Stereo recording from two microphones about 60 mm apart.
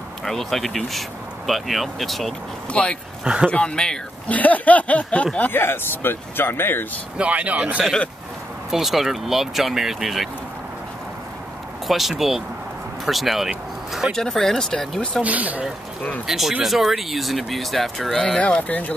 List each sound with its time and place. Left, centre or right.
0.2 s speech: centre
2.7 s speech: centre
4.3 s speech: left
5.5 s speech: left
7.2 s speech: right
8.6 s speech: centre
11.9 s speech: centre
14.1 s speech: centre
15.2 s speech: right
16.3 s speech: centre
18.4 s speech: left